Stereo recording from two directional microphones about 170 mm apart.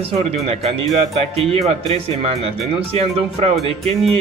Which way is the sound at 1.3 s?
35° right (ahead or behind).